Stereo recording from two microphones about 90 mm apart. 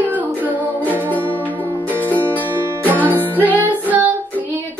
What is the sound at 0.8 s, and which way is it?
Music, 20° left (ahead or behind).